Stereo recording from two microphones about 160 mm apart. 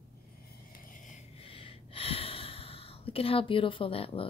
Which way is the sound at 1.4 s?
35° left (ahead or behind).